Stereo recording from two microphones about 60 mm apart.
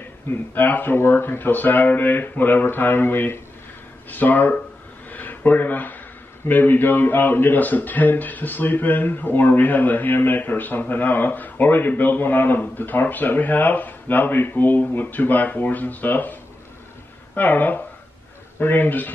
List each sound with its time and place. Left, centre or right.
0.3 s speech: left
5.1 s a sound: left
6.4 s speech: left
17.4 s speech: left